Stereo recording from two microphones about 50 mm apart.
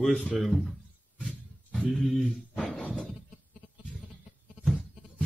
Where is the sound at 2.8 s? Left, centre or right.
Left.